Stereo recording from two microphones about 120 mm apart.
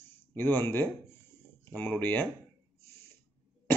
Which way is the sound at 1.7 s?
15° left (ahead or behind).